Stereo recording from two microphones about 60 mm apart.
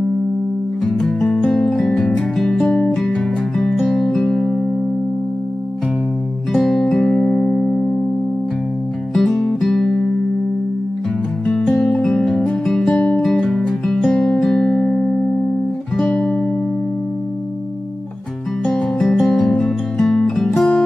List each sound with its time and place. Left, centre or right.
0.9 s music: centre
4.3 s music: centre
6.5 s music: centre
9.1 s music: centre
11.4 s music: centre
18.7 s music: centre